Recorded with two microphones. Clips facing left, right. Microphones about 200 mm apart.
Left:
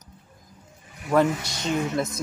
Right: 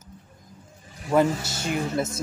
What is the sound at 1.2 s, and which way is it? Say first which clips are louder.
Speech: even; 30° right (ahead or behind).